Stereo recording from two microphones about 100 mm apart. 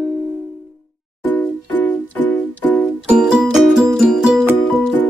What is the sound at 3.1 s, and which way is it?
Music, 10° right (ahead or behind).